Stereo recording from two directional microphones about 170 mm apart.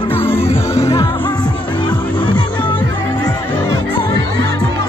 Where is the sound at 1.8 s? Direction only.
25° left (ahead or behind).